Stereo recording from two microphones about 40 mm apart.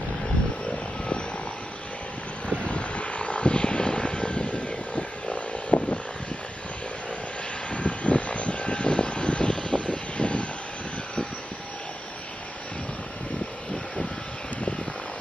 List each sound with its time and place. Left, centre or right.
2.6 s vehicle: left
7.7 s vehicle: left